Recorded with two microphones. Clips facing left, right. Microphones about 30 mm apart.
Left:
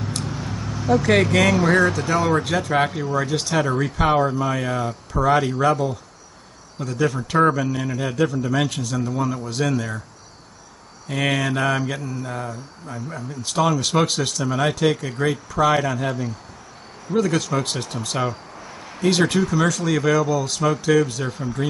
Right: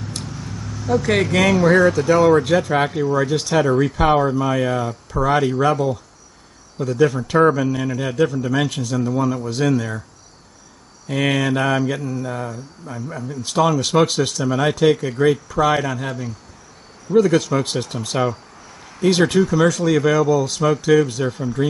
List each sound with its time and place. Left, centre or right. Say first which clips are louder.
0.2 s speech: left 3 dB; centre
11.1 s speech: right 3 dB; centre
18.3 s a sound: left 1 dB; centre
19.0 s speech: right 3 dB; centre